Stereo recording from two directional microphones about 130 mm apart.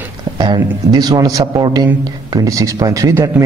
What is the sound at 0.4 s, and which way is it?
A man's voice, 35° right (ahead or behind).